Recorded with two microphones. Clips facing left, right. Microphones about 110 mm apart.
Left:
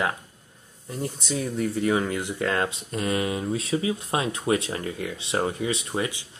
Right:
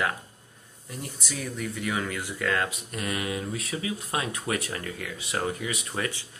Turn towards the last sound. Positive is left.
turn(degrees=20)  # may be behind; listen again after turning